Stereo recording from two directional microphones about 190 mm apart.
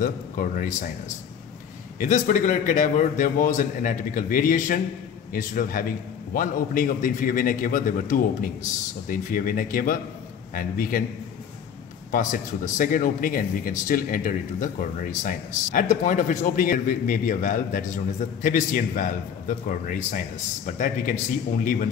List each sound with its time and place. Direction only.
0.0 s speech: 45° left (ahead or behind)
12.1 s speech: 45° left (ahead or behind)